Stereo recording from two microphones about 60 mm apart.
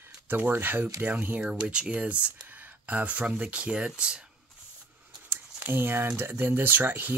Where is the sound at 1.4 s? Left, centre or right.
Centre.